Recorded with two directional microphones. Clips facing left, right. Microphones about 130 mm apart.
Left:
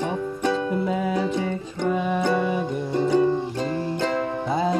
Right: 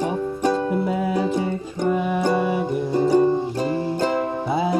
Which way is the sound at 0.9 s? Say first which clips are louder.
Right 2 dB; 5° right (ahead or behind).